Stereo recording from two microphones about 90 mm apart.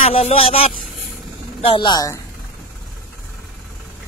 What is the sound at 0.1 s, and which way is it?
Speech, 90° left.